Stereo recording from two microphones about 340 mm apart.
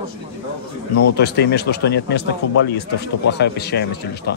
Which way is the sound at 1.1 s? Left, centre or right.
Left.